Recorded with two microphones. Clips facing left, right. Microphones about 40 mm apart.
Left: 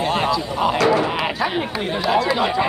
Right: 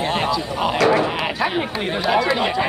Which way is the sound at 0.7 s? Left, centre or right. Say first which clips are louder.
Right 2 dB; right.